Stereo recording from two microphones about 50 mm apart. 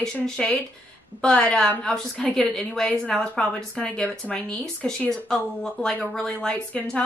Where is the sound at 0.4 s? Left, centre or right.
Centre.